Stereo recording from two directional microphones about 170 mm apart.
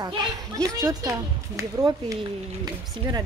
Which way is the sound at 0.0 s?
20° right (ahead or behind).